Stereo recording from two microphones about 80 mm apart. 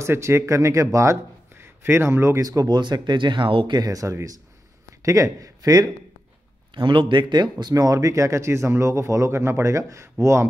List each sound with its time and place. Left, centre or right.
0.0 s speech: right
2.4 s speech: right
2.8 s speech: right
3.8 s speech: right
6.7 s speech: right